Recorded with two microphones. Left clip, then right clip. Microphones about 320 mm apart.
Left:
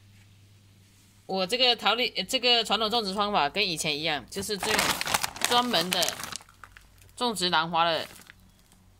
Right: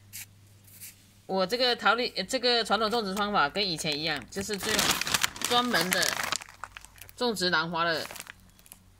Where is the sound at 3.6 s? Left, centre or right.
Left.